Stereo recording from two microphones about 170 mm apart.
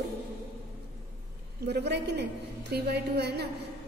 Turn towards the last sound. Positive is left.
turn(degrees=-75)  # may be behind; listen again after turning